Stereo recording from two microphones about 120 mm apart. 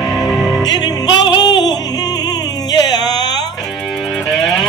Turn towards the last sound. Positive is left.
turn(degrees=35)  # may be behind; listen again after turning